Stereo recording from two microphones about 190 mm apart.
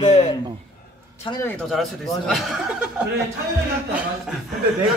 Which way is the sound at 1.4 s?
5° left (ahead or behind).